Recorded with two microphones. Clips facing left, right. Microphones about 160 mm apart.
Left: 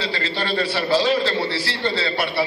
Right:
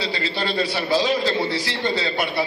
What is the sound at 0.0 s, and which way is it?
A man's voice, 10° right (ahead or behind).